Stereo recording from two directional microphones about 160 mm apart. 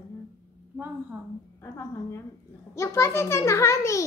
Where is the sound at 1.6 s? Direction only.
15° left (ahead or behind).